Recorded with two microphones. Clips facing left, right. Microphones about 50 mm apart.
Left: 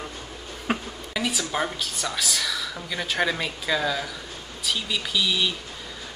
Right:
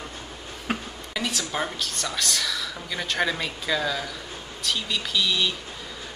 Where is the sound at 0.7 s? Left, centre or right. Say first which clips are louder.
Left 2 dB; centre.